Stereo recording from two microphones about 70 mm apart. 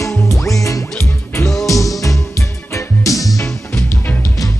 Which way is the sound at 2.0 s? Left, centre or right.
Left.